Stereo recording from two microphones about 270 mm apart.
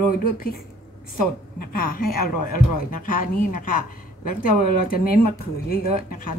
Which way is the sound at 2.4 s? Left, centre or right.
Left.